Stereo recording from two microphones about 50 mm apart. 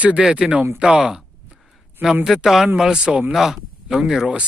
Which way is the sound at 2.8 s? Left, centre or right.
Centre.